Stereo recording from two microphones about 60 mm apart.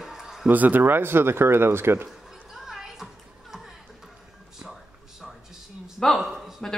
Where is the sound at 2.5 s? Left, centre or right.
Centre.